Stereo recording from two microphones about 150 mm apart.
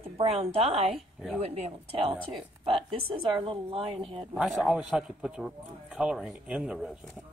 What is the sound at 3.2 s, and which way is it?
Speech, 35° right (ahead or behind).